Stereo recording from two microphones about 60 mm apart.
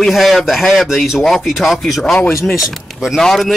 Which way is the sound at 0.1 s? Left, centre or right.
Centre.